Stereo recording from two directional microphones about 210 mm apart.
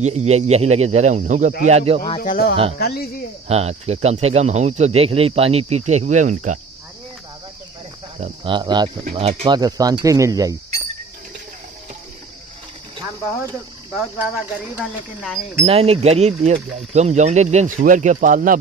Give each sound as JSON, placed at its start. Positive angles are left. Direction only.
{"t": 0.0, "sound": "speech", "side_deg": -30}
{"t": 2.1, "sound": "speech", "side_deg": 40}
{"t": 3.4, "sound": "speech", "side_deg": -30}
{"t": 8.2, "sound": "speech", "side_deg": -20}
{"t": 9.6, "sound": "speech", "side_deg": -20}
{"t": 12.9, "sound": "a sound", "side_deg": -15}
{"t": 13.9, "sound": "speech", "side_deg": -5}
{"t": 15.6, "sound": "speech", "side_deg": -30}